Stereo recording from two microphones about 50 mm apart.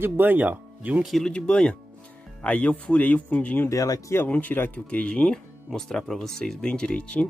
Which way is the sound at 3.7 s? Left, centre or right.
Left.